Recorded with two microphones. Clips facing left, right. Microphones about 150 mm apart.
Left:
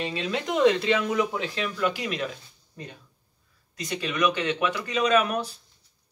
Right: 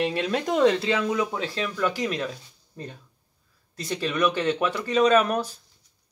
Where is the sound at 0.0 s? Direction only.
60° right (ahead or behind).